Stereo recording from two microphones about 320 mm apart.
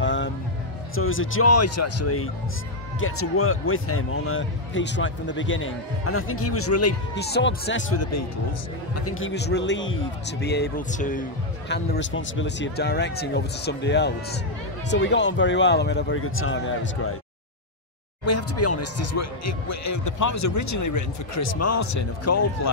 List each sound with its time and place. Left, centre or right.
0.0 s vehicle: left
0.9 s speech: left
7.2 s speech: left
11.7 s speech: left
18.2 s speech: left